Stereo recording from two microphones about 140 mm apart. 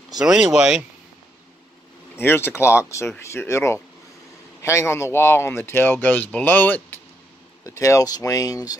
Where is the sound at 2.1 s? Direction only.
15° left (ahead or behind).